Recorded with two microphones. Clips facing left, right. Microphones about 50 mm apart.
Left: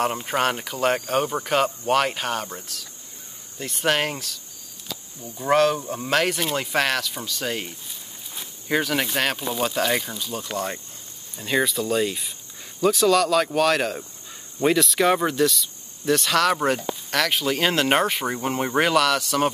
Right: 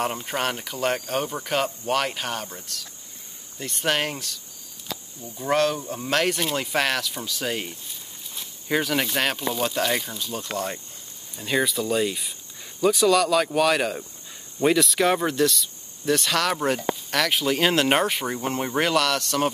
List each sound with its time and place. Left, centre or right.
0.0 s speech: centre